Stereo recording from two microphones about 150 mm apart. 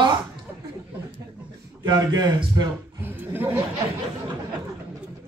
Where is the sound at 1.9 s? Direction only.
25° right (ahead or behind).